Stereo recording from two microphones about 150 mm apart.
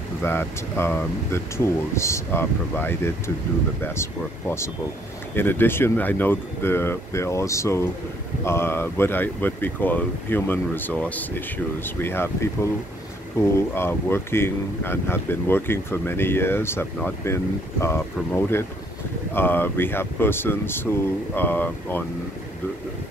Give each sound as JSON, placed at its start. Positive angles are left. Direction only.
{"t": 0.2, "sound": "speech", "side_deg": 15}